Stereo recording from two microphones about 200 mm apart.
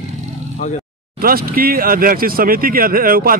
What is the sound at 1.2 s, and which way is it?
Speech, 50° right (ahead or behind).